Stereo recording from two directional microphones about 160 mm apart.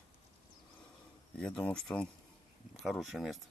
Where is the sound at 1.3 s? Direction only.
10° left (ahead or behind).